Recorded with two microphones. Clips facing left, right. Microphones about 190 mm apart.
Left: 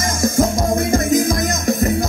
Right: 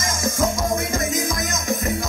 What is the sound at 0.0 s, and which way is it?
Music, 35° left (ahead or behind).